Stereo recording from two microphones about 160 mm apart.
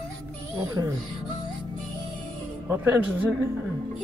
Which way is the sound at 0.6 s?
25° right (ahead or behind).